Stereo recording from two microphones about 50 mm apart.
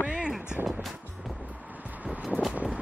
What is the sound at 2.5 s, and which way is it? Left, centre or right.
Vehicle, right.